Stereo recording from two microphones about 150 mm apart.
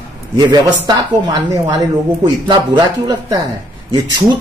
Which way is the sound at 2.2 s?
30° right (ahead or behind).